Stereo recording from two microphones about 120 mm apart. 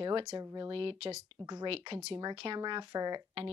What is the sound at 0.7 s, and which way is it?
Speech, 45° right (ahead or behind).